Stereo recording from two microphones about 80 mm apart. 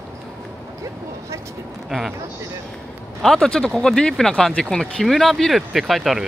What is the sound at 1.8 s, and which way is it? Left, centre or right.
Speech, centre.